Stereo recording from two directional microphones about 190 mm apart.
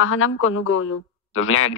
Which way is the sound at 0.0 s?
90° left.